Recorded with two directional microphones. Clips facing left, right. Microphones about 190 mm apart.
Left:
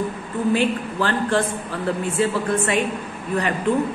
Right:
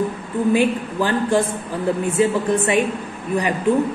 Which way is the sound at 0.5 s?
15° right (ahead or behind).